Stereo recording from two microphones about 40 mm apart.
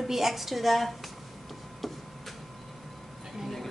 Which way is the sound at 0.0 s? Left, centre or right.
Centre.